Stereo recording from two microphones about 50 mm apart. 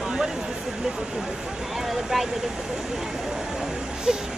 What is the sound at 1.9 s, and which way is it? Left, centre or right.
Speech, centre.